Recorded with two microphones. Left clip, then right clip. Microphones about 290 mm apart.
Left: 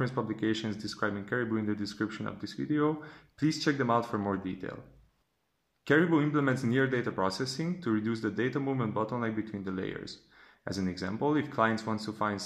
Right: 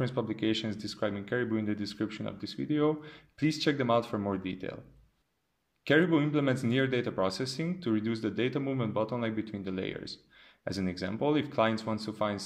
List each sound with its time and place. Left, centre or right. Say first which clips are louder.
0.0 s speech: even; centre
5.9 s speech: even; centre